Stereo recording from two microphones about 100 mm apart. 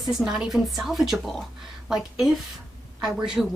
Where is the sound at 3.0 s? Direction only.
5° right (ahead or behind).